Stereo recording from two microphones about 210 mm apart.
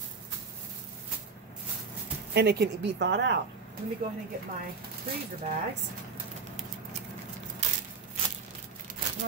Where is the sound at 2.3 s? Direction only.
50° right (ahead or behind).